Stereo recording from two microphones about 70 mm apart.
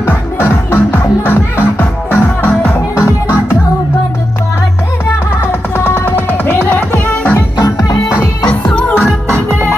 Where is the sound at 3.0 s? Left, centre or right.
Left.